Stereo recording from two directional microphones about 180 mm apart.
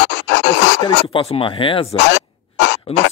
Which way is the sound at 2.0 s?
75° left (ahead or behind).